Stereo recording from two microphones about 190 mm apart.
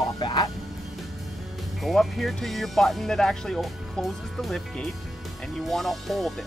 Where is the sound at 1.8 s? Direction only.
Centre (ahead or behind).